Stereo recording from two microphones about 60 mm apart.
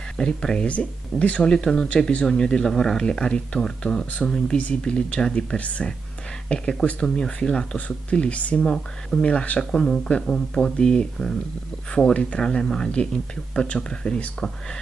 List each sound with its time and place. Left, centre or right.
0.2 s speech: centre